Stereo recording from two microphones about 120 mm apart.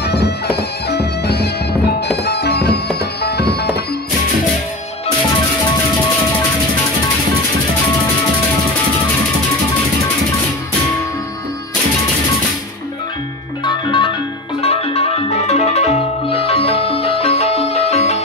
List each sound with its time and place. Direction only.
13.7 s music: 45° left (ahead or behind)
14.6 s music: 60° left (ahead or behind)